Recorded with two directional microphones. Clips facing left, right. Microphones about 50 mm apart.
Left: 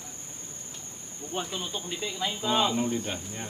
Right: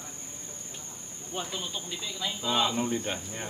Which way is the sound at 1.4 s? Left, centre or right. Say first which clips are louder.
Left 2 dB; centre.